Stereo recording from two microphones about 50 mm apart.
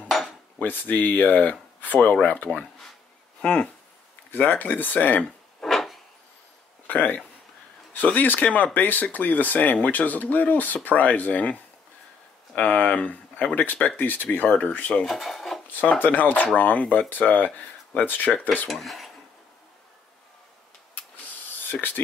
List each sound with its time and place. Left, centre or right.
0.1 s cutlery: centre
0.6 s speech: left
3.3 s speech: left
4.3 s speech: left
5.6 s a sound: centre
6.9 s speech: left
15.0 s speech: centre
15.7 s speech: left
18.7 s speech: centre